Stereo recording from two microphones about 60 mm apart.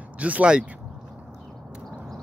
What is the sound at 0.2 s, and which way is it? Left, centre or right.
Speech, right.